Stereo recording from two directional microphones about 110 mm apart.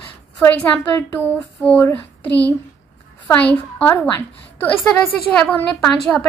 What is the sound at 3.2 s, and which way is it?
A woman's voice, 10° left (ahead or behind).